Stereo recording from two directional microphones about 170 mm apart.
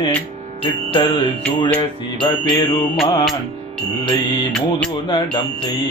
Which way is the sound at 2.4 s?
25° left (ahead or behind).